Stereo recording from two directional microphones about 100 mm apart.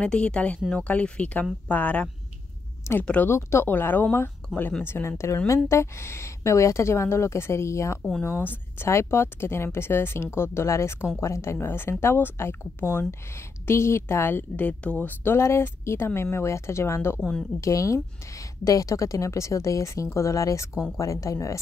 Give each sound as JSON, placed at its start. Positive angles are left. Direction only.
{"t": 0.0, "sound": "a woman's voice", "side_deg": 10}
{"t": 17.2, "sound": "speech", "side_deg": 5}
{"t": 17.6, "sound": "speech", "side_deg": 35}